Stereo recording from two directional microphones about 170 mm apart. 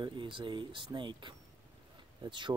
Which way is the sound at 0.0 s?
30° right (ahead or behind).